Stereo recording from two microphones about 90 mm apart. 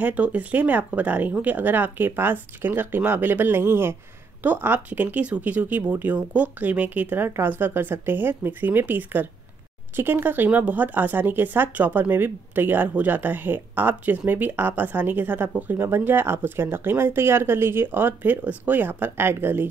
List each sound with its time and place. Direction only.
0.0 s speech: 15° right (ahead or behind)